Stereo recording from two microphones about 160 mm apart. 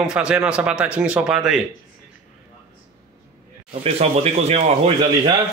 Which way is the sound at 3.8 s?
40° right (ahead or behind).